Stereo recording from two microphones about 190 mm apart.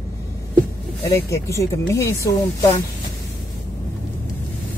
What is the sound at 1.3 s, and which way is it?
Speech, 15° left (ahead or behind).